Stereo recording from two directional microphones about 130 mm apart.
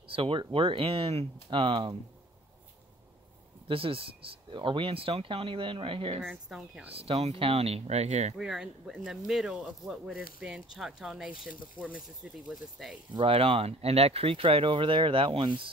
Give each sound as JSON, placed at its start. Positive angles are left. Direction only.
{"t": 0.1, "sound": "speech", "side_deg": -45}
{"t": 3.6, "sound": "speech", "side_deg": -45}
{"t": 6.2, "sound": "speech", "side_deg": -5}
{"t": 6.9, "sound": "speech", "side_deg": -50}
{"t": 8.4, "sound": "speech", "side_deg": -5}
{"t": 13.1, "sound": "speech", "side_deg": -45}